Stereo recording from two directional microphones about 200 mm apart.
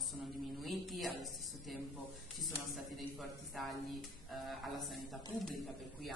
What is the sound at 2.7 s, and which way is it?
Speech, centre (ahead or behind).